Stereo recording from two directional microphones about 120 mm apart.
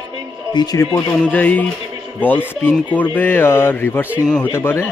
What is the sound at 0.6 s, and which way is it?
Speech, 40° left (ahead or behind).